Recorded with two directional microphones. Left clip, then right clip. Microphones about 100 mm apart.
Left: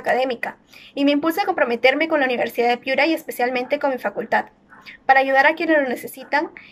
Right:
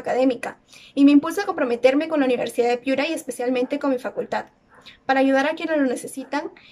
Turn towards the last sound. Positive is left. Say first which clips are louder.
# left 4 dB
turn(degrees=-35)  # may be behind; listen again after turning